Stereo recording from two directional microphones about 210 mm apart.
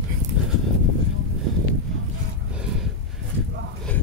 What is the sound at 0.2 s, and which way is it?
Horse, 35° right (ahead or behind).